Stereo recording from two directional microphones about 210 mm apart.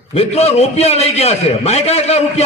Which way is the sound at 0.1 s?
30° left (ahead or behind).